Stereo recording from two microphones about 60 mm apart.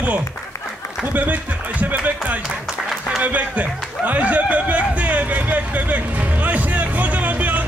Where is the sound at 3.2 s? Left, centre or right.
Right.